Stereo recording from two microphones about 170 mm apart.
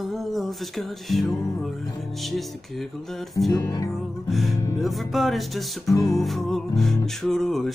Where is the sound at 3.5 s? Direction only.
20° left (ahead or behind).